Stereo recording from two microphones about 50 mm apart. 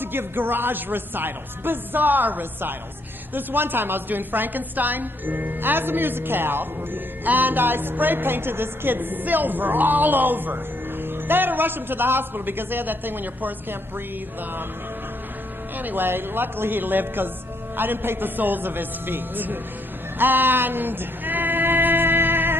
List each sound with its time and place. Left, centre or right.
0.0 s a woman's voice: right
15.8 s speech: right
20.2 s music: right